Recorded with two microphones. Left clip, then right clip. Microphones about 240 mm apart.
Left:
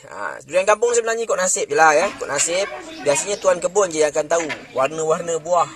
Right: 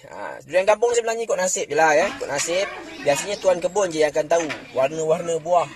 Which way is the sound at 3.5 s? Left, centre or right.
Centre.